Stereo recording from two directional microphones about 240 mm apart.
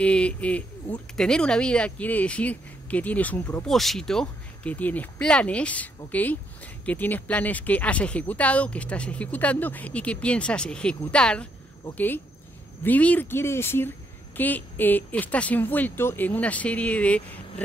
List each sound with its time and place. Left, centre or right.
0.0 s speech: centre